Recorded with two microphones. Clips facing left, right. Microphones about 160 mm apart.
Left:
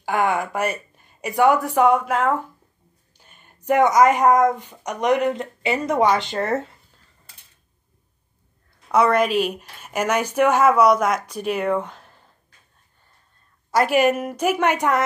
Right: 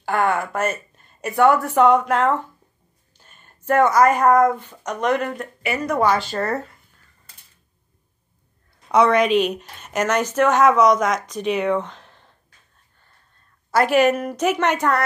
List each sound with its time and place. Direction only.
0.0 s speech: 15° left (ahead or behind)
8.9 s a woman's voice: 5° left (ahead or behind)
13.7 s speech: 10° left (ahead or behind)